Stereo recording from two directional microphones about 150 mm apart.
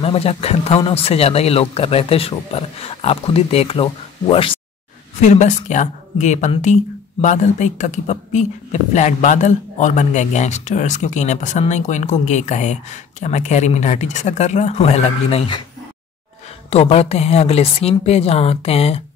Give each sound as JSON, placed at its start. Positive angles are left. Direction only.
{"t": 0.0, "sound": "speech", "side_deg": 40}
{"t": 5.2, "sound": "speech", "side_deg": 50}
{"t": 16.7, "sound": "speech", "side_deg": 45}